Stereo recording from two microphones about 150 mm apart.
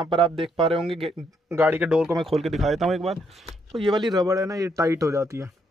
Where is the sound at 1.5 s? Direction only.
15° right (ahead or behind).